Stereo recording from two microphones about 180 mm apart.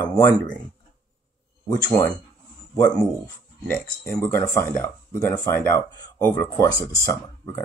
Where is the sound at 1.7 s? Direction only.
20° left (ahead or behind).